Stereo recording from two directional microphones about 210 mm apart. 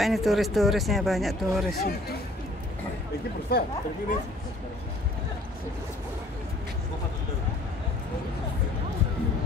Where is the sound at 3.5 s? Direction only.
45° left (ahead or behind).